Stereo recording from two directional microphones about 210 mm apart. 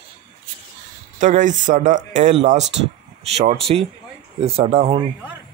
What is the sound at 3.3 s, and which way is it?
Speech, 30° right (ahead or behind).